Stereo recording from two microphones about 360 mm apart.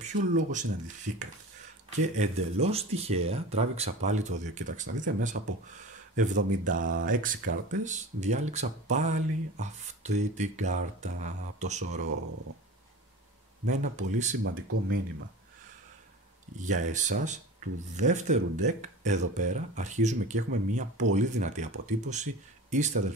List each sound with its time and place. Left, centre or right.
0.0 s speech: right
13.7 s speech: centre
14.4 s speech: right
16.5 s speech: centre